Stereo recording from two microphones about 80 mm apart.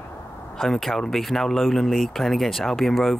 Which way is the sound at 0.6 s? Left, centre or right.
Centre.